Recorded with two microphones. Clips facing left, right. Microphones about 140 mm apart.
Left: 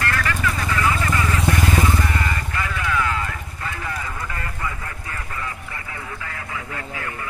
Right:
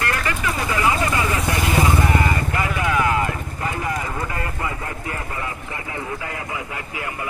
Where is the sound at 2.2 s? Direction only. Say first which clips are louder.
Right 4 dB; 25° right (ahead or behind).